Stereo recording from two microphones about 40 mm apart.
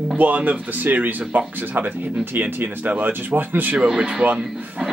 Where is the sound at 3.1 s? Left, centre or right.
Right.